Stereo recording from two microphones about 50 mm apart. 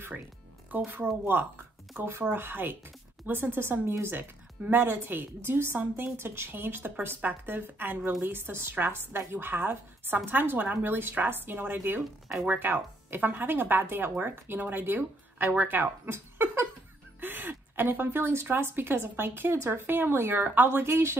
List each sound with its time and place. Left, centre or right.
0.7 s a woman's voice: right
4.1 s a woman's voice: right
5.8 s speech: right
6.1 s a woman's voice: right
12.0 s speech: centre
12.4 s a woman's voice: right